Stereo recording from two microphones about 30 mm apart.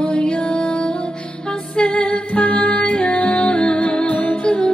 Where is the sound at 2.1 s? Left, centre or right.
Left.